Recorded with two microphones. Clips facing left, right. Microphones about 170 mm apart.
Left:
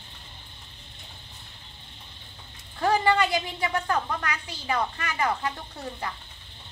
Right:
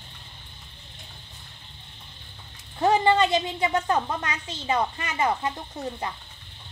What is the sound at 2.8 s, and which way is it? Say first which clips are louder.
A woman's voice: right 3 dB; 25° right (ahead or behind).